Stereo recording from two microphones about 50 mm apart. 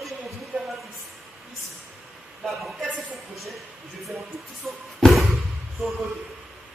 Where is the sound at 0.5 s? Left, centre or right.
Right.